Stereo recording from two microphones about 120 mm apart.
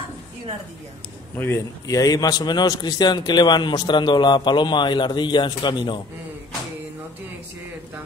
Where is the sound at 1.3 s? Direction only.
20° left (ahead or behind); by 6.0 s 40° left (ahead or behind).